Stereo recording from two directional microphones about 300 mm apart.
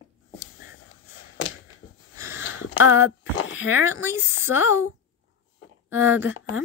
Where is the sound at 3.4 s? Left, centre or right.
Left.